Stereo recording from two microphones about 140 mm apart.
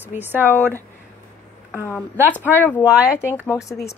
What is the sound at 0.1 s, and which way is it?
Speech, 15° right (ahead or behind).